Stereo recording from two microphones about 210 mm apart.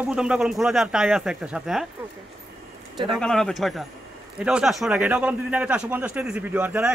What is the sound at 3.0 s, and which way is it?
Speech, centre (ahead or behind).